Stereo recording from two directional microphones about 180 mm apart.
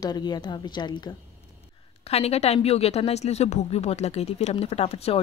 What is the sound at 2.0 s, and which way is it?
Speech, 35° left (ahead or behind).